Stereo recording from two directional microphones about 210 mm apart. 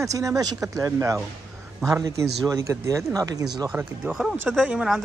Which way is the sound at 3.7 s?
5° right (ahead or behind).